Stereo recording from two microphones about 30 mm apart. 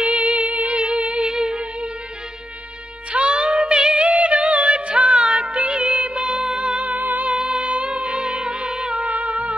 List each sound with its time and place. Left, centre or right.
0.0 s music: right
3.1 s music: right
4.1 s music: right
6.9 s music: right
7.2 s music: right
9.1 s music: right